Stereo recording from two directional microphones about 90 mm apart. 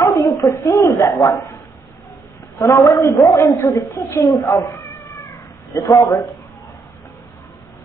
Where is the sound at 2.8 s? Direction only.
35° left (ahead or behind).